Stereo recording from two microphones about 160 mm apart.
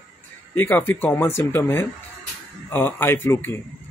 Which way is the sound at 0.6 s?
10° left (ahead or behind).